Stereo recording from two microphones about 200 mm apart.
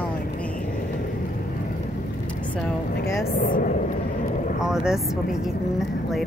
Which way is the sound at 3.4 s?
45° left (ahead or behind).